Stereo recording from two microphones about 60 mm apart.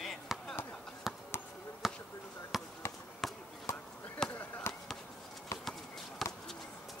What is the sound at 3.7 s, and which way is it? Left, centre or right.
Basketball bounce, left.